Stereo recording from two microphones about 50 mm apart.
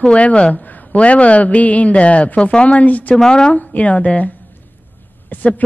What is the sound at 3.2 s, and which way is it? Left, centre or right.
Speech, centre.